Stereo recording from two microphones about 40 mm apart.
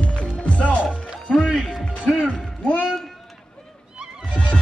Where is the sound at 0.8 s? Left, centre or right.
Right.